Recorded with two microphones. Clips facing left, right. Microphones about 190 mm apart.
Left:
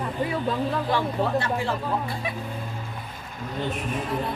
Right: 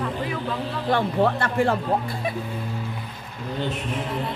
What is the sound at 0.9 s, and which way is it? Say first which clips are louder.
Speech: right 4 dB; 55° right (ahead or behind).